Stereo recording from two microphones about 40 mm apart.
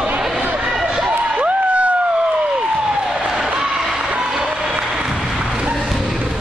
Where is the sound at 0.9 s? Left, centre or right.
Right.